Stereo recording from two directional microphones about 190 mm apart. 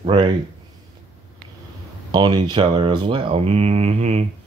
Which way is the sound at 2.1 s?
25° right (ahead or behind).